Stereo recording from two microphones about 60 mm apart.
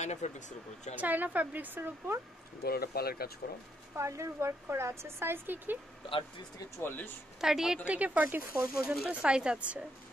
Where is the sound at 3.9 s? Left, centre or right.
Right.